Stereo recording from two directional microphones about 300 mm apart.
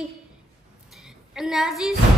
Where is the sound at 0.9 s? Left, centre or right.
Centre.